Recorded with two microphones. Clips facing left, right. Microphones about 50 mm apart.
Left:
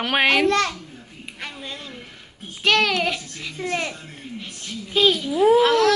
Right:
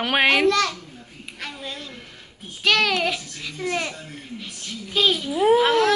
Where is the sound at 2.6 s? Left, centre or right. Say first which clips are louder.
Left 1 dB; centre.